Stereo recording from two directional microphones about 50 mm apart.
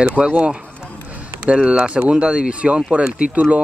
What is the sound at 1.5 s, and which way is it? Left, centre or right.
Speech, centre.